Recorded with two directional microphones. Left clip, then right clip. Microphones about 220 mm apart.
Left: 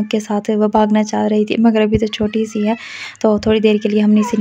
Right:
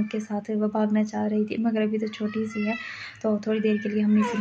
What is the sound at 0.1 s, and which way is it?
A woman's voice, 45° left (ahead or behind).